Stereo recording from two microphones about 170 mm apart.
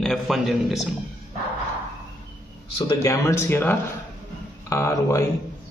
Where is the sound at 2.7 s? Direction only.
20° left (ahead or behind).